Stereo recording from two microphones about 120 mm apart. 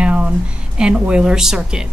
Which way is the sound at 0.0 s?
10° right (ahead or behind).